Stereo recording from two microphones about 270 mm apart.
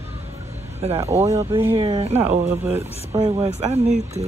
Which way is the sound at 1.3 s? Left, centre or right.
Centre.